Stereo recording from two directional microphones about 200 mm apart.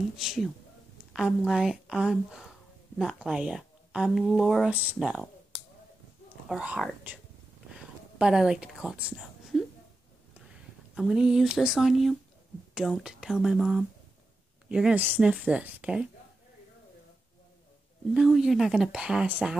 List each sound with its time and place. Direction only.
0.2 s speech: centre (ahead or behind)
5.5 s finger snapping: 20° right (ahead or behind)
6.5 s speech: 5° right (ahead or behind)
8.2 s a woman's voice: 5° right (ahead or behind)
11.0 s speech: centre (ahead or behind)
18.1 s speech: centre (ahead or behind)